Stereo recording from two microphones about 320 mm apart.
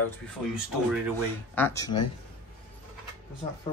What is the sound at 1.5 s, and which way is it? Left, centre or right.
Speech, centre.